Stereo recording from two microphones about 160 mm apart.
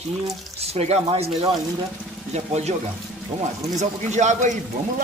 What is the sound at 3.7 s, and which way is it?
Speech, 45° right (ahead or behind).